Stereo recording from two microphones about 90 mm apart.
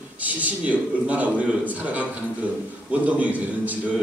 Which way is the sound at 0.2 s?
15° right (ahead or behind).